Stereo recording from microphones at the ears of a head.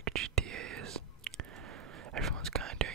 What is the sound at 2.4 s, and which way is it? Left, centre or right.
Whispering, right.